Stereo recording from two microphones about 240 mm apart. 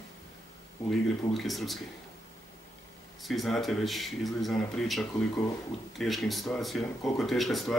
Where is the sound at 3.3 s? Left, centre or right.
Centre.